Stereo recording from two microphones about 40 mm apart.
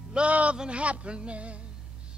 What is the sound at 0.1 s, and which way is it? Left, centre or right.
A man's voice, right.